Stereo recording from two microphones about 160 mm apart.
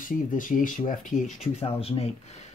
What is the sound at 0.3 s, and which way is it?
Speech, 55° left (ahead or behind).